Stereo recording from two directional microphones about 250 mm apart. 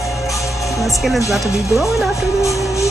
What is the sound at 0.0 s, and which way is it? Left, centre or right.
Music, centre.